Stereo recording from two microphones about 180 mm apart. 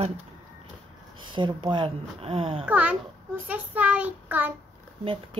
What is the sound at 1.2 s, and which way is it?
Speech, 25° right (ahead or behind).